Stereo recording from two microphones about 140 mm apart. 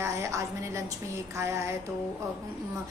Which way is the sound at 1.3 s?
20° right (ahead or behind).